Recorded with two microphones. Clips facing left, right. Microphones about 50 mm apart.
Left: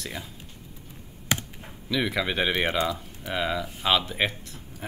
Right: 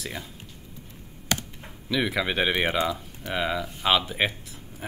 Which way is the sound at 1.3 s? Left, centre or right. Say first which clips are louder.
Left 1 dB; centre.